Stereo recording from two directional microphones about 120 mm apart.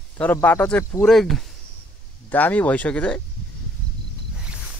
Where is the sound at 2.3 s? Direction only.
15° left (ahead or behind).